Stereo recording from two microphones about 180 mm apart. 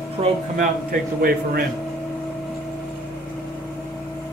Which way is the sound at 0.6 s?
55° right (ahead or behind).